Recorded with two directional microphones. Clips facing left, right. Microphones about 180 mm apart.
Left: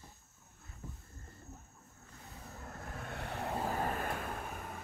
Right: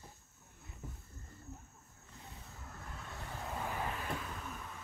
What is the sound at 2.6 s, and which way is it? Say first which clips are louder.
Vehicle: left 5 dB; 55° left (ahead or behind).